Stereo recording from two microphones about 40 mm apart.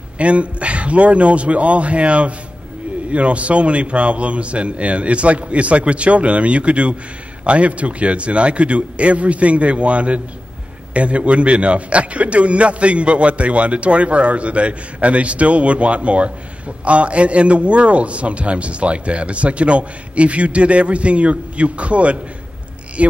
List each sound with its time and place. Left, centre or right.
0.2 s a man's voice: right